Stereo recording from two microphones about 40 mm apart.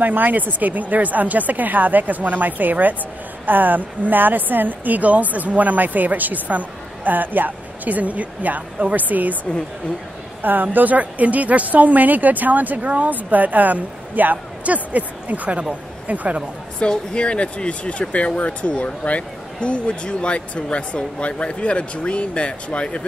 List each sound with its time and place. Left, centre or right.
0.0 s a woman's voice: right
17.1 s speech: left